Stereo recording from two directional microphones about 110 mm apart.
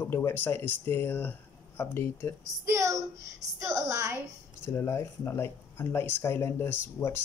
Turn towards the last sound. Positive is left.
turn(degrees=20)  # may be behind; listen again after turning